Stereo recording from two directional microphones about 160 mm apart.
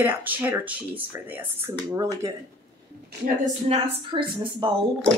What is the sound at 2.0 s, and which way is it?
Speech, 25° right (ahead or behind).